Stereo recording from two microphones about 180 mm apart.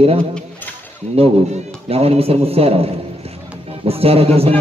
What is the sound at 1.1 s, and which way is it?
A man's voice, 35° right (ahead or behind).